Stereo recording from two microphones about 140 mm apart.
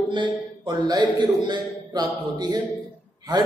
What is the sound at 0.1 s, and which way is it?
A man's voice, 35° right (ahead or behind).